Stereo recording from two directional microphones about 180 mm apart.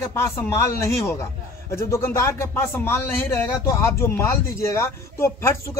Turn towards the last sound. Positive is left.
turn(degrees=15)  # may be behind; listen again after turning